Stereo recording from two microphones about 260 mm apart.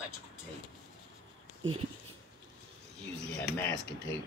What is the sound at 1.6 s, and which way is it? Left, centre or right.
Speech, right.